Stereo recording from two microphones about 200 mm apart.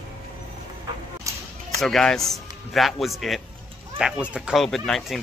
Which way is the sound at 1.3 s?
15° right (ahead or behind).